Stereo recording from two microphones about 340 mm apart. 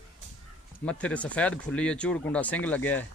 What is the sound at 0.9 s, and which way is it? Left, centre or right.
Speech, centre.